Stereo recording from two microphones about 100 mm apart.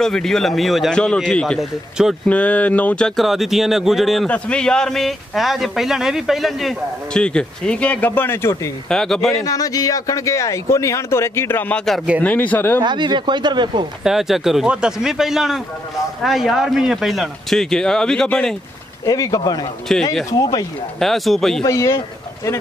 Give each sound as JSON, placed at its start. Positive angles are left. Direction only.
{"t": 0.0, "sound": "a man's voice", "side_deg": 5}
{"t": 8.8, "sound": "speech", "side_deg": 5}
{"t": 9.4, "sound": "a man's voice", "side_deg": 35}
{"t": 12.8, "sound": "speech", "side_deg": -50}
{"t": 14.0, "sound": "speech", "side_deg": -5}
{"t": 19.0, "sound": "speech", "side_deg": 35}
{"t": 19.9, "sound": "speech", "side_deg": 5}
{"t": 20.2, "sound": "speech", "side_deg": 40}
{"t": 21.0, "sound": "speech", "side_deg": 0}
{"t": 21.6, "sound": "speech", "side_deg": 30}